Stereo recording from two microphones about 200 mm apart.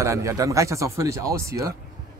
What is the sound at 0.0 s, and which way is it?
Speech, 15° right (ahead or behind).